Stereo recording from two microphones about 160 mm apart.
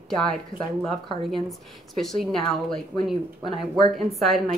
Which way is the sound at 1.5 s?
Centre (ahead or behind).